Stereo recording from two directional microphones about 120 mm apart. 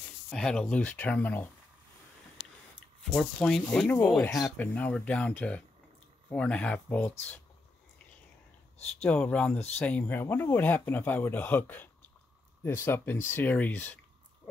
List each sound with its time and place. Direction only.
0.3 s speech: 5° left (ahead or behind)
3.1 s speech: 5° left (ahead or behind)
9.0 s speech: 10° left (ahead or behind)